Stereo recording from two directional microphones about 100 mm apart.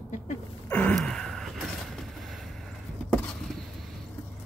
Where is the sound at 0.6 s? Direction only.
15° left (ahead or behind).